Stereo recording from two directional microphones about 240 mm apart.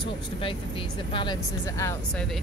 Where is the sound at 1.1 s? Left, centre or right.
Centre.